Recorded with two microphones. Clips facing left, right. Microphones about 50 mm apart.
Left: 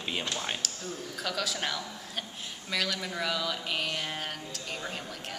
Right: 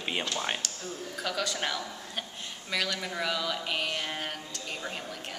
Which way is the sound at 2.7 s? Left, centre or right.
Centre.